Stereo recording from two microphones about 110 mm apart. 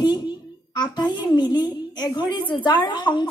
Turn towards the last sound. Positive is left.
turn(degrees=45)  # may be behind; listen again after turning